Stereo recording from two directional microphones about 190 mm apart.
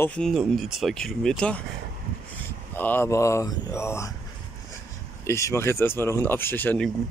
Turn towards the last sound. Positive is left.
turn(degrees=5)  # may be behind; listen again after turning